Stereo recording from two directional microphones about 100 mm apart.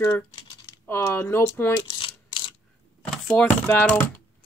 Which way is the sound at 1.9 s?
55° left (ahead or behind).